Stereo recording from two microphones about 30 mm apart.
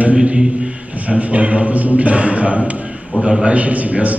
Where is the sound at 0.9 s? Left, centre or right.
Right.